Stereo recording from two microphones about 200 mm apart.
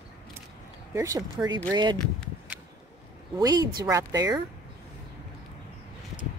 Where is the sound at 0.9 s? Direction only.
15° right (ahead or behind).